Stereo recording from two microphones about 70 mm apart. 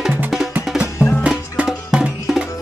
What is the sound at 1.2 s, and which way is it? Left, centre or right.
Music, centre.